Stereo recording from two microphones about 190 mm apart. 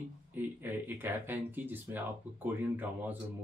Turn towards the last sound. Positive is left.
turn(degrees=-10)  # may be behind; listen again after turning